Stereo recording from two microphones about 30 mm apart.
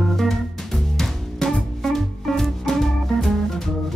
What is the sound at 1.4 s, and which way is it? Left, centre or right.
Music, left.